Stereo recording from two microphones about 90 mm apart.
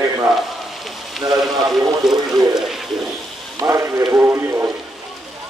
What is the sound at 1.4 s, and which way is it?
Speech, centre (ahead or behind).